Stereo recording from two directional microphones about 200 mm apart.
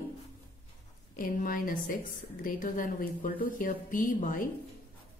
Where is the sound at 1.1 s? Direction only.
45° left (ahead or behind).